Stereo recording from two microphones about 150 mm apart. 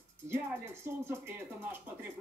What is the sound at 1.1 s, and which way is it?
A man's voice, 15° right (ahead or behind).